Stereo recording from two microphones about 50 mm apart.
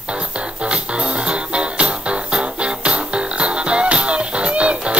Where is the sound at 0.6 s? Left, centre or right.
Right.